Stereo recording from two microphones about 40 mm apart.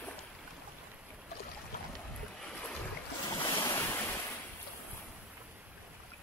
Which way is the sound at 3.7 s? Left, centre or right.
Left.